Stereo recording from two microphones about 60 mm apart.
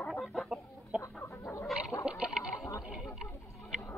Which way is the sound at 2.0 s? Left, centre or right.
Centre.